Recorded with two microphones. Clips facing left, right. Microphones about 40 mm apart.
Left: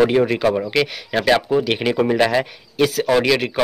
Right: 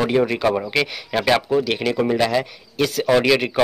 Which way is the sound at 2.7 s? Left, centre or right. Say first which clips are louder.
Left 1 dB; centre.